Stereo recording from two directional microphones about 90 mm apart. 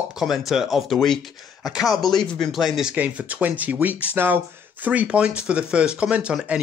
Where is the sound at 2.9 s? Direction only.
15° right (ahead or behind).